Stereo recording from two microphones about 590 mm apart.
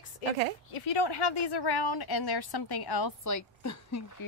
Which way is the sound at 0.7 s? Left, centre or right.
Left.